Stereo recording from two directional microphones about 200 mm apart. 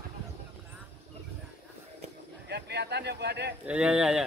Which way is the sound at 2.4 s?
55° right (ahead or behind).